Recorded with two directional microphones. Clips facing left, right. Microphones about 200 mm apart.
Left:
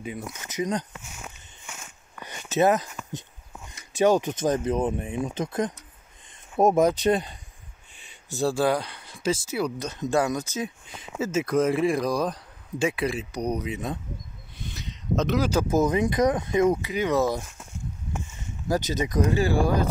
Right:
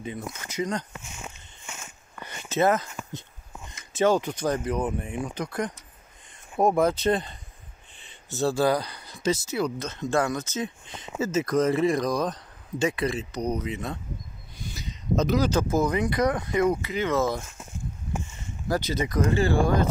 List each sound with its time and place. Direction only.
0.0 s speech: 10° left (ahead or behind)
0.9 s walk: centre (ahead or behind)
2.5 s speech: 15° left (ahead or behind)
3.9 s speech: 15° left (ahead or behind)
8.5 s speech: centre (ahead or behind)
9.5 s speech: 10° left (ahead or behind)
14.7 s a sound: centre (ahead or behind)
15.7 s speech: 20° left (ahead or behind)
18.9 s speech: 15° left (ahead or behind)